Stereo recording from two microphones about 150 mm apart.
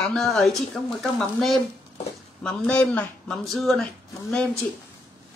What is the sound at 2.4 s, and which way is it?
Speech, 5° left (ahead or behind).